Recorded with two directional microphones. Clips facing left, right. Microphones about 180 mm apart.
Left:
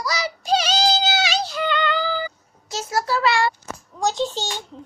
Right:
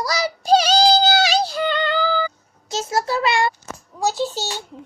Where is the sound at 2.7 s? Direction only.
25° right (ahead or behind).